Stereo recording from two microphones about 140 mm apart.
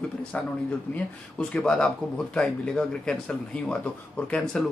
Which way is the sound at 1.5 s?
5° left (ahead or behind).